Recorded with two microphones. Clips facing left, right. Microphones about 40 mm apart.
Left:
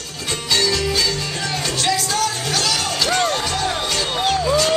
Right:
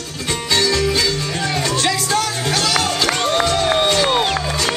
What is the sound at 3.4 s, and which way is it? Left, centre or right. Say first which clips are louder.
Crowd: right 6 dB; right.